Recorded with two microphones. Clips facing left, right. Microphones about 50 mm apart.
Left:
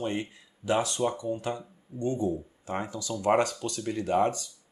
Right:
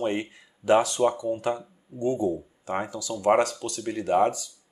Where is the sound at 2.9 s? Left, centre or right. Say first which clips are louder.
Right 3 dB; centre.